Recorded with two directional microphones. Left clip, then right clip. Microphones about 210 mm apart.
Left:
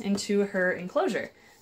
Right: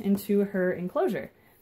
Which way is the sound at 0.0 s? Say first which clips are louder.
Even; 35° right (ahead or behind).